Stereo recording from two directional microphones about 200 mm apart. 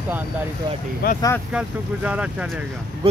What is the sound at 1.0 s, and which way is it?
Speech, 50° left (ahead or behind).